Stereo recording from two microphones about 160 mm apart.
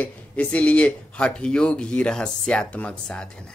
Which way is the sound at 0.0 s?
10° left (ahead or behind).